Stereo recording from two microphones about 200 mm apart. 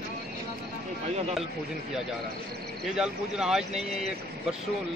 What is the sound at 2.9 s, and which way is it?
Speech, 5° right (ahead or behind).